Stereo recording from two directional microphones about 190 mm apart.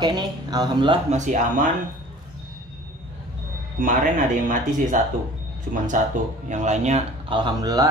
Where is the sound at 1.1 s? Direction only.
40° right (ahead or behind).